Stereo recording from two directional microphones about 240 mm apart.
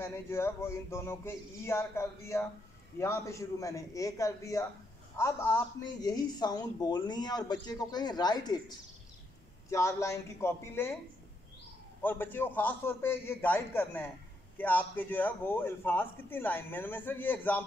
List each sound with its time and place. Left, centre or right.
0.0 s speech: centre
12.0 s speech: centre